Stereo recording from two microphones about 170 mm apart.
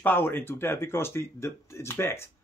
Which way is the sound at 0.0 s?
10° left (ahead or behind).